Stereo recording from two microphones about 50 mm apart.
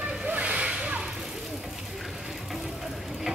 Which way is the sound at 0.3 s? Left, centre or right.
Right.